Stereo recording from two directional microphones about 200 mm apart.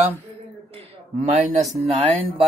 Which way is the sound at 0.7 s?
35° right (ahead or behind).